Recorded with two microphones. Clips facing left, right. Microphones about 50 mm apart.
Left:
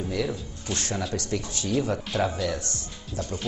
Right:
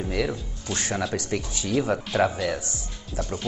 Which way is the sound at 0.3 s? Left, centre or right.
Right.